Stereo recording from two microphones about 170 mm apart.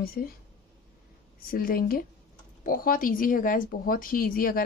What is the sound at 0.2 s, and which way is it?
Speech, 60° left (ahead or behind).